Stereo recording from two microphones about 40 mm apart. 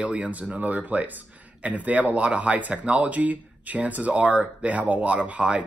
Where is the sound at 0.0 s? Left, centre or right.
Right.